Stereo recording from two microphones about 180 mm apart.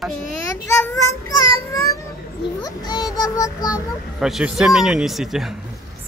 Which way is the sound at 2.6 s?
20° left (ahead or behind).